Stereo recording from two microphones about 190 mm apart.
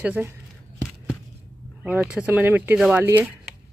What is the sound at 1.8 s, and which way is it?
Speech, 10° right (ahead or behind).